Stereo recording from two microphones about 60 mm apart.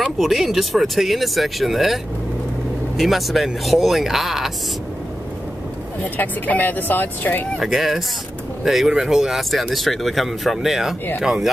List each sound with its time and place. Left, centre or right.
0.2 s speech: centre
3.0 s speech: centre
6.1 s speech: left
7.5 s speech: centre